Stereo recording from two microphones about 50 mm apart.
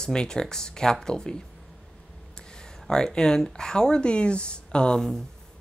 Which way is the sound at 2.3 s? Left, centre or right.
Centre.